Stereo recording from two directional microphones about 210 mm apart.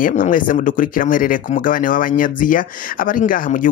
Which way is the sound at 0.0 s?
40° left (ahead or behind).